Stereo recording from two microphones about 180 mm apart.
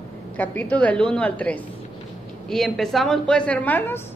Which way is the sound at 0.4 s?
10° left (ahead or behind).